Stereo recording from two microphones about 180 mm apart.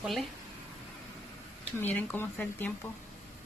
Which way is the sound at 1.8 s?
10° left (ahead or behind).